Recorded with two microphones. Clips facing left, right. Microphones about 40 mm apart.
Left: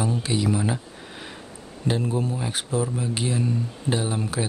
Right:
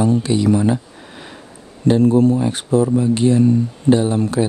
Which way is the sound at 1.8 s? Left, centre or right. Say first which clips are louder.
Right 12 dB; centre.